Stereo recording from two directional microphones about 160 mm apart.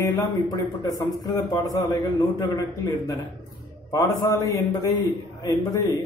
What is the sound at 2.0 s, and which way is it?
A man's voice, 25° left (ahead or behind).